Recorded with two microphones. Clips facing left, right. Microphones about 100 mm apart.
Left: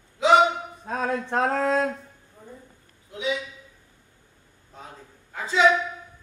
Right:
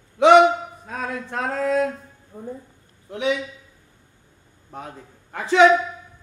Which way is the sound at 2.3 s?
45° right (ahead or behind).